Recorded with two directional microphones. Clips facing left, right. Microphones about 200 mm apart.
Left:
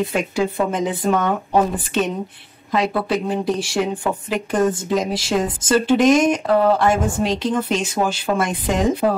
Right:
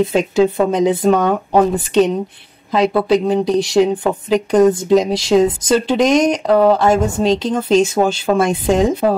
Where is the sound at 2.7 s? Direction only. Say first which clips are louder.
Right 6 dB; 30° right (ahead or behind).